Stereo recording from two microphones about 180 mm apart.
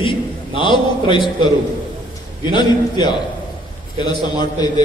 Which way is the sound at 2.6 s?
25° left (ahead or behind).